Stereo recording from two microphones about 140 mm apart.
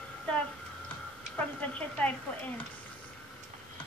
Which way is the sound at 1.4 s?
10° left (ahead or behind).